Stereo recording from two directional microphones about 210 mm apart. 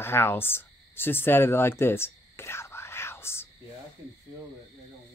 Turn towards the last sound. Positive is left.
turn(degrees=10)  # may be behind; listen again after turning